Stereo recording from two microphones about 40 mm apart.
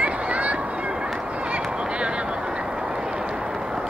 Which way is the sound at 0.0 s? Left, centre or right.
Right.